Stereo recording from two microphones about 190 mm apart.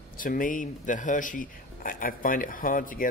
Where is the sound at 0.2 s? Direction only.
45° left (ahead or behind).